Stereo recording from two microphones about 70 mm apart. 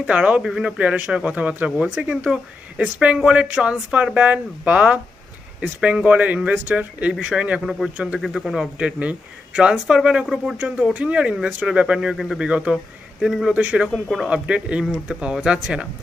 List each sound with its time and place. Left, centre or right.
0.0 s speech: centre
0.7 s speech: right
8.2 s speech: centre
8.7 s speech: centre
10.6 s speech: centre
12.7 s speech: centre
13.5 s speech: centre